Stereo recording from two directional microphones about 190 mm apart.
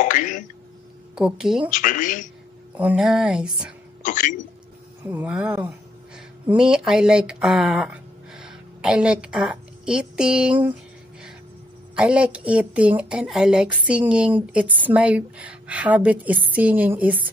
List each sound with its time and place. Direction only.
0.0 s throat clearing: 45° left (ahead or behind)
1.1 s a sound: 5° right (ahead or behind)
1.7 s speech: 45° left (ahead or behind)
2.7 s a sound: 5° right (ahead or behind)
4.0 s speech: 45° left (ahead or behind)
5.0 s speech: 10° right (ahead or behind)
11.9 s a woman's voice: 5° right (ahead or behind)